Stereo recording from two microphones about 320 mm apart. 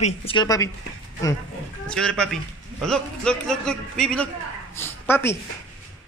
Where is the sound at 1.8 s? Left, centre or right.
Centre.